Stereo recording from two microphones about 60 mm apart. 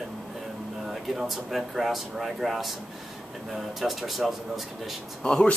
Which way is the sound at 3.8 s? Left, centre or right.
Centre.